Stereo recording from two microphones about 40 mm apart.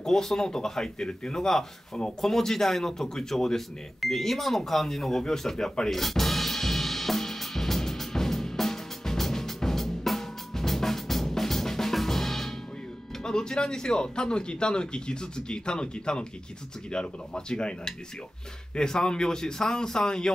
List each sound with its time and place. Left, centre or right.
0.0 s speech: centre
5.9 s music: centre
13.2 s speech: centre